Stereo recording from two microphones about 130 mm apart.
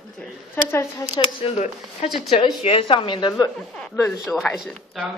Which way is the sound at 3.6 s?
5° left (ahead or behind).